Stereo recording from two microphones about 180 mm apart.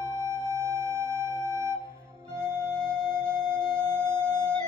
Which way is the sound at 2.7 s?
5° left (ahead or behind).